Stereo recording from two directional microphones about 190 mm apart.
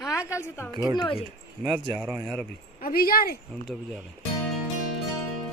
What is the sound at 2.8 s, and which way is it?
Speech, 50° left (ahead or behind).